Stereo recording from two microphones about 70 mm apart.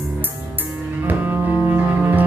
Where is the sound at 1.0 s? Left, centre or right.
Right.